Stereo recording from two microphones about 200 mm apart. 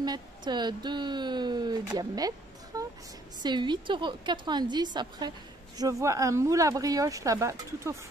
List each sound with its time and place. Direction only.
0.5 s a woman's voice: 20° right (ahead or behind)
2.0 s a sound: 20° right (ahead or behind)
3.4 s a woman's voice: 20° right (ahead or behind)